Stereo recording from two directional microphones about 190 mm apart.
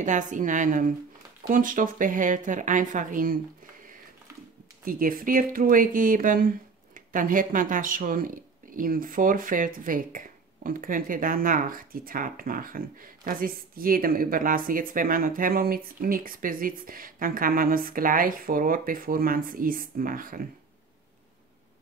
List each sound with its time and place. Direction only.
0.0 s speech: 40° right (ahead or behind)
4.8 s speech: 50° right (ahead or behind)